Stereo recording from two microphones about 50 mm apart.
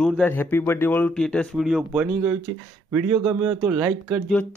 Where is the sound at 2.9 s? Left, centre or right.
Right.